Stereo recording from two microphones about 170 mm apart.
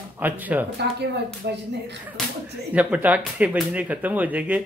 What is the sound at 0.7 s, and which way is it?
Speech, 80° right.